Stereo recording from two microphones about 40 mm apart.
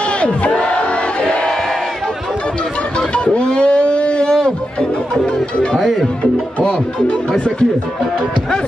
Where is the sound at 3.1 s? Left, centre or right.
Left.